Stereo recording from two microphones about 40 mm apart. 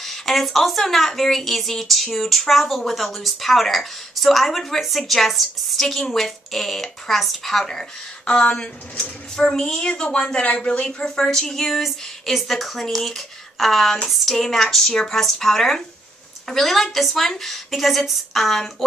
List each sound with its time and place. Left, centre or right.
0.0 s a woman's voice: centre; by 11.1 s left
11.1 s speech: centre